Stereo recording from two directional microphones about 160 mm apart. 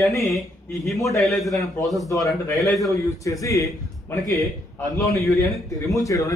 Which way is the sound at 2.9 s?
20° left (ahead or behind).